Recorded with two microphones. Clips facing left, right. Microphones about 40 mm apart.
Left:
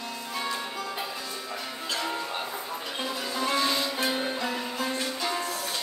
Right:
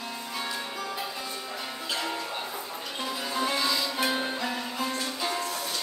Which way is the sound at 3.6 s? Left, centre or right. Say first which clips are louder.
Left 1 dB; left.